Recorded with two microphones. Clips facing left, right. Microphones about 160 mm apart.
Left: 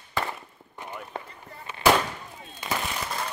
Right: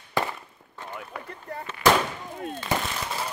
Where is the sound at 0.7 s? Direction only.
15° left (ahead or behind).